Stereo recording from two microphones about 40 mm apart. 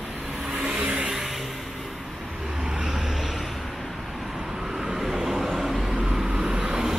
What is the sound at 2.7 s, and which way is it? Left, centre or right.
Vehicle, centre.